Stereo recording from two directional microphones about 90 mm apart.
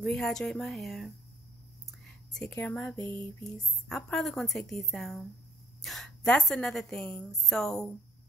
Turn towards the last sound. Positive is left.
turn(degrees=5)  # may be behind; listen again after turning